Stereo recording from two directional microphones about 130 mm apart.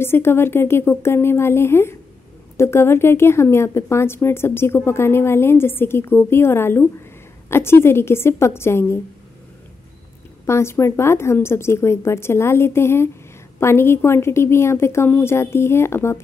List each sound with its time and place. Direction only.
0.0 s a woman's voice: 20° left (ahead or behind)
10.4 s a woman's voice: 20° left (ahead or behind)